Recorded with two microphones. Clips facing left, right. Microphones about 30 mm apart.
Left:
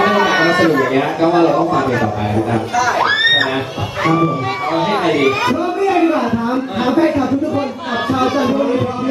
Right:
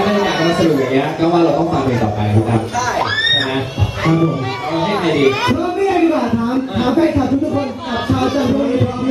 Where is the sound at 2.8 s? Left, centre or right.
Centre.